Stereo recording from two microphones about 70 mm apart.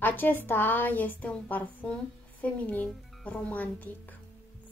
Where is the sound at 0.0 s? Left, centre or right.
Left.